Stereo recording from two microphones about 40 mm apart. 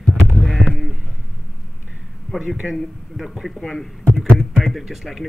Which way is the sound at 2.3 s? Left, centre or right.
Centre.